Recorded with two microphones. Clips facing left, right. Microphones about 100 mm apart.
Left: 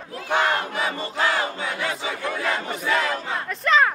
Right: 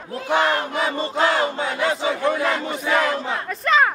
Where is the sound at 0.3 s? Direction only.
25° right (ahead or behind).